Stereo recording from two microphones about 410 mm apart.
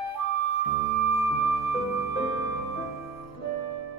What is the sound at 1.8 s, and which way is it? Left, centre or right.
Music, left.